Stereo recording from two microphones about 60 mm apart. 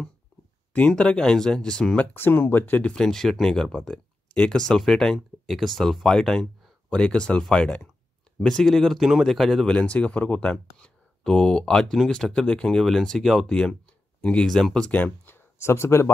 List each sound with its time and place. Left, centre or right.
0.7 s speech: centre
2.1 s speech: left
2.9 s speech: centre
6.9 s speech: centre
9.0 s speech: centre
9.3 s speech: centre
9.7 s speech: left
11.2 s speech: centre
14.9 s speech: left
15.2 s speech: left